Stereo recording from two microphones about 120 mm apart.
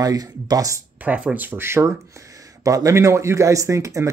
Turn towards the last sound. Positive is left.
turn(degrees=-25)  # may be behind; listen again after turning